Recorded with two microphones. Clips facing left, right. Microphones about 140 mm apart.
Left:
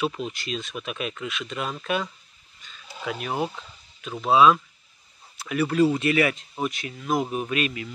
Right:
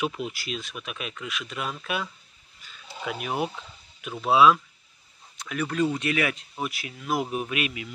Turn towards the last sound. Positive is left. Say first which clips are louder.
# left 2 dB
turn(degrees=-10)  # may be behind; listen again after turning